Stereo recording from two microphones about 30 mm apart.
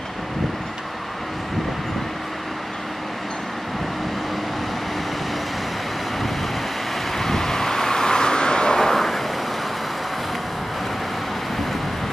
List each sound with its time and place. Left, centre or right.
7.2 s vehicle: centre
8.7 s vehicle: centre